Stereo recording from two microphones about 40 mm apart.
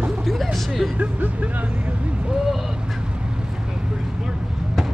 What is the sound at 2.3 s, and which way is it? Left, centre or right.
Speech, centre.